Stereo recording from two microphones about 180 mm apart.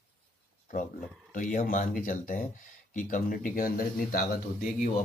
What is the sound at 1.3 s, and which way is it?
Speech, 45° left (ahead or behind).